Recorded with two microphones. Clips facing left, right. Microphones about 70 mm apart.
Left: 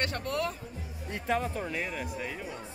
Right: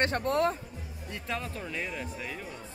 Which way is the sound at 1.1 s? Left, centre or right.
Left.